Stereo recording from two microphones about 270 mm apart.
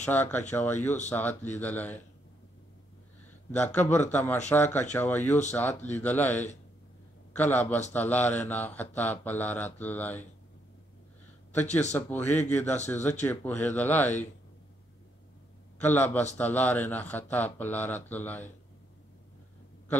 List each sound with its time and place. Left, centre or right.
0.0 s speech: centre
3.5 s speech: centre
11.6 s speech: left
12.1 s speech: centre
12.7 s speech: left
13.2 s speech: centre
15.8 s speech: centre